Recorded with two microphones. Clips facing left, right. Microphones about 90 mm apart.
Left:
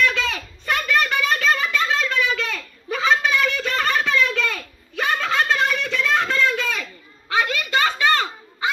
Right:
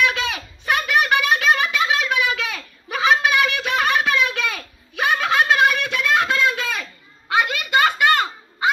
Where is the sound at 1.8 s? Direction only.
65° right (ahead or behind).